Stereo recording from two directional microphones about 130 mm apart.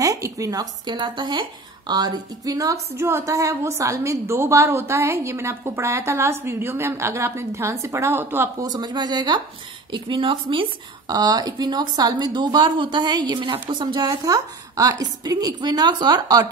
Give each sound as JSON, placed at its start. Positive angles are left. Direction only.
{"t": 0.0, "sound": "a woman's voice", "side_deg": -25}
{"t": 8.6, "sound": "a woman's voice", "side_deg": -35}